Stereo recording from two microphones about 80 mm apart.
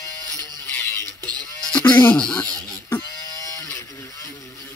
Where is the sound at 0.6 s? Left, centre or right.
Left.